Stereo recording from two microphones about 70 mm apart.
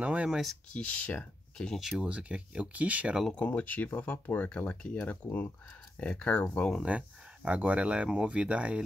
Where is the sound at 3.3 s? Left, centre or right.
Left.